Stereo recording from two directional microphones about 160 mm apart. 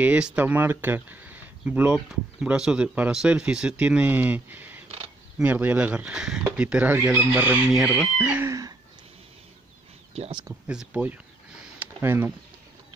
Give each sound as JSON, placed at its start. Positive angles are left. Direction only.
{"t": 0.0, "sound": "speech", "side_deg": -10}
{"t": 4.8, "sound": "wild animals", "side_deg": -40}
{"t": 5.4, "sound": "speech", "side_deg": -10}
{"t": 8.5, "sound": "speech", "side_deg": -20}
{"t": 10.7, "sound": "speech", "side_deg": -5}
{"t": 11.8, "sound": "a sound", "side_deg": -15}